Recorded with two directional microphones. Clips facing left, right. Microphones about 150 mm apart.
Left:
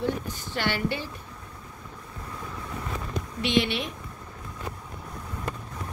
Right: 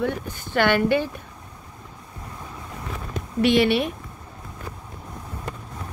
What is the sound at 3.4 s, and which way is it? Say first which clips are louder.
Speech: right 7 dB; 55° right (ahead or behind).